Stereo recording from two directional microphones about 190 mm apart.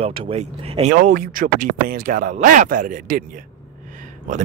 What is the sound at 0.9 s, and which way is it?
Speech, 45° right (ahead or behind).